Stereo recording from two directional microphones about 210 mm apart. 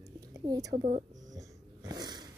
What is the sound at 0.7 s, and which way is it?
Speech, 30° right (ahead or behind).